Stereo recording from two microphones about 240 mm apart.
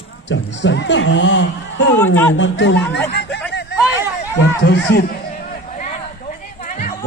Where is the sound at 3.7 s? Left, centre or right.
Centre.